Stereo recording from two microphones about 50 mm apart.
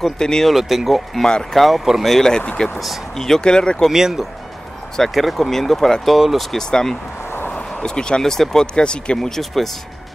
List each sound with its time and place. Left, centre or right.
0.2 s speech: centre
0.5 s speech: centre
2.3 s speech: centre
3.9 s speech: centre
4.9 s speech: centre
6.0 s speech: centre
6.5 s speech: centre
7.4 s a sound: left
7.8 s speech: centre